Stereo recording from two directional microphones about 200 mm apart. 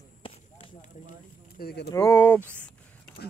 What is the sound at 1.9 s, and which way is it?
Speech, 15° left (ahead or behind).